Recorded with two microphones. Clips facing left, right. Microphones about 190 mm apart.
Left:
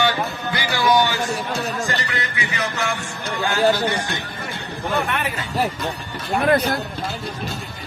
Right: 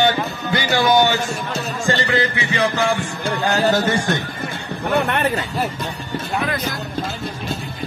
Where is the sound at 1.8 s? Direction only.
30° right (ahead or behind); by 4.2 s 45° right (ahead or behind).